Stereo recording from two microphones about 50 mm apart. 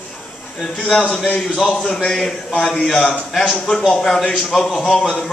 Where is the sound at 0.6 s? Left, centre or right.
Centre.